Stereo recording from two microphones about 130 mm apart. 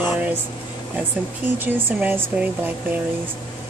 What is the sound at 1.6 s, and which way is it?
Speech, 15° right (ahead or behind).